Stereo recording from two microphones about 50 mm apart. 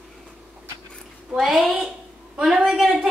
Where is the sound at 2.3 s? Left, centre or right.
Centre.